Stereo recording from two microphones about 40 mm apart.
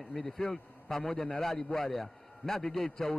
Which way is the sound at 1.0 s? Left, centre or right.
Left.